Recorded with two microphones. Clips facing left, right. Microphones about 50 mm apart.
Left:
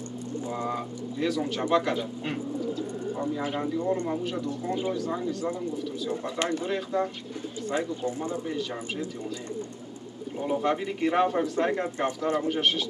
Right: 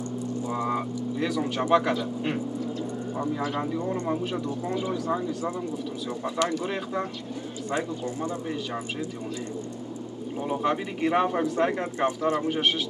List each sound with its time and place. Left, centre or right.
0.5 s speech: centre
3.9 s speech: right
6.7 s speech: centre
10.4 s speech: centre
12.2 s speech: right
12.4 s speech: centre